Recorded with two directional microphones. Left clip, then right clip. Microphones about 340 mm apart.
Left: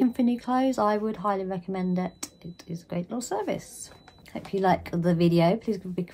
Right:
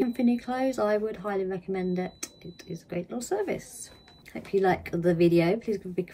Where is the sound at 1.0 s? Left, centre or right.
Left.